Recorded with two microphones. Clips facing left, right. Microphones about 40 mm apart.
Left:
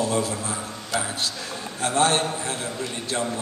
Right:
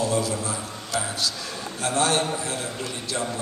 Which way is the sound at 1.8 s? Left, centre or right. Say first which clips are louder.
Left 2 dB; left.